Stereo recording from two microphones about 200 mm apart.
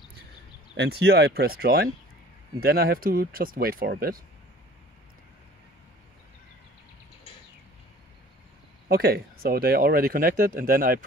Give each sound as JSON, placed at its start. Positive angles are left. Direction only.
{"t": 0.7, "sound": "speech", "side_deg": -55}
{"t": 8.8, "sound": "speech", "side_deg": -50}